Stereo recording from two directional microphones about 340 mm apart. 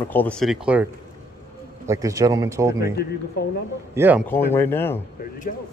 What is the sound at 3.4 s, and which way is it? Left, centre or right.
Speech, left.